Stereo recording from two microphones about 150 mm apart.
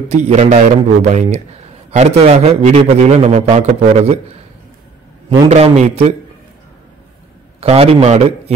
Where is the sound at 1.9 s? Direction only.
45° right (ahead or behind).